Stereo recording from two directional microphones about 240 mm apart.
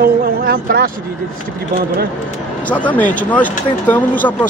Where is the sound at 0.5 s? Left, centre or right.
Right.